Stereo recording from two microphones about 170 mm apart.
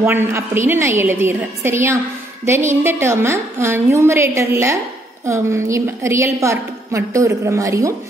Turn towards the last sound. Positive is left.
turn(degrees=-20)  # may be behind; listen again after turning